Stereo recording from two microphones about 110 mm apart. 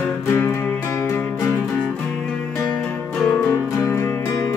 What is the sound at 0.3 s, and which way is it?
Music, 20° left (ahead or behind).